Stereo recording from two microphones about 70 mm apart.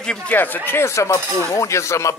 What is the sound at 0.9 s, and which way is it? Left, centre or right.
Speech, left.